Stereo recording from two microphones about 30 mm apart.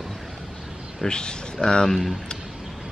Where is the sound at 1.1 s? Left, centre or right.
Left.